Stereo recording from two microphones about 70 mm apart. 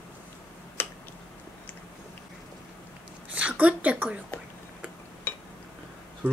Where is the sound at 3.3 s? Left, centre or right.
Centre.